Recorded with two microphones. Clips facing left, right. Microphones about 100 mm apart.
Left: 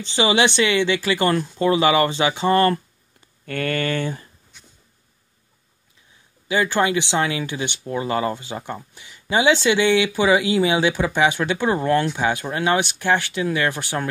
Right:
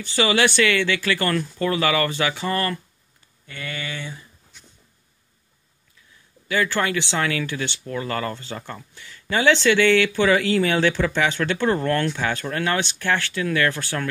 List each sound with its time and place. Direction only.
0.0 s speech: 20° left (ahead or behind)
3.4 s speech: 55° left (ahead or behind)
6.4 s speech: 20° left (ahead or behind)